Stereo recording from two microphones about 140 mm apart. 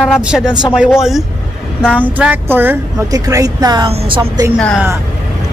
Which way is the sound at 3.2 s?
25° right (ahead or behind).